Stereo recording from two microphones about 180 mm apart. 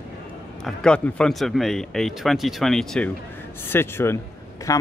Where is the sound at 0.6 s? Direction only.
5° left (ahead or behind).